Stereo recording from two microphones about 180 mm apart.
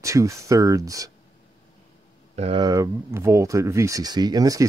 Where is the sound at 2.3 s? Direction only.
35° right (ahead or behind).